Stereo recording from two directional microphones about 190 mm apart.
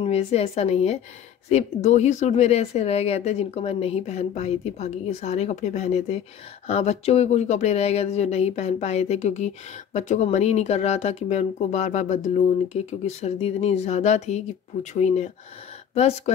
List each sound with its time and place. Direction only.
0.0 s speech: 35° left (ahead or behind)